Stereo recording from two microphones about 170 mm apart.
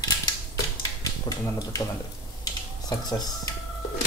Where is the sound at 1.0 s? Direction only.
20° left (ahead or behind).